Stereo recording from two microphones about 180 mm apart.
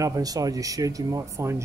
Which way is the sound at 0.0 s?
20° right (ahead or behind).